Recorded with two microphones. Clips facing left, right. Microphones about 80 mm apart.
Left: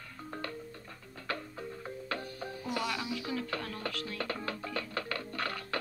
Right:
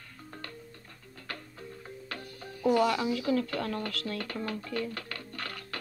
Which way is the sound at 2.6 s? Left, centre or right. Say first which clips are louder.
Right 11 dB; right.